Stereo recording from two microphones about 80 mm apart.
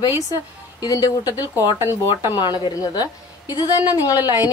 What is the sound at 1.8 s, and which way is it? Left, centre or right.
Speech, right.